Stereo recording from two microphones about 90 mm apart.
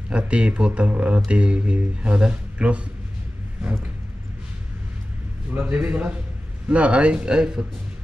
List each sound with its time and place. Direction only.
0.1 s speech: 10° right (ahead or behind)
5.5 s speech: 20° right (ahead or behind)